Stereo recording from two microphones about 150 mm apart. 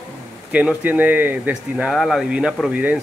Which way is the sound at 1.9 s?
Centre (ahead or behind).